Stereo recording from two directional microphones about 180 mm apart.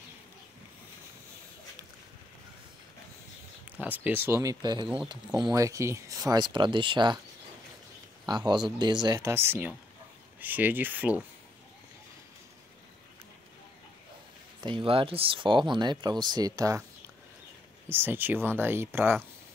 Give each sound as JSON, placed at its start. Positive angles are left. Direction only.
{"t": 3.7, "sound": "speech", "side_deg": -10}
{"t": 8.3, "sound": "speech", "side_deg": -25}
{"t": 14.6, "sound": "speech", "side_deg": -25}
{"t": 17.8, "sound": "speech", "side_deg": -10}